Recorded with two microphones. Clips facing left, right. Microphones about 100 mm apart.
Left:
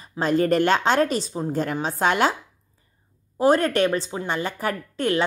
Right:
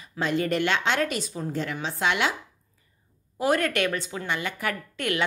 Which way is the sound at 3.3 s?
35° left (ahead or behind).